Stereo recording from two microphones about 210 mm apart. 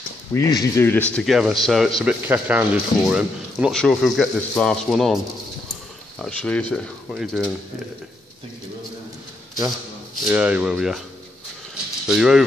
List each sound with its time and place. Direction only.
0.3 s speech: 15° left (ahead or behind); by 7.5 s centre (ahead or behind)
10.2 s speech: 5° right (ahead or behind)
12.1 s speech: centre (ahead or behind)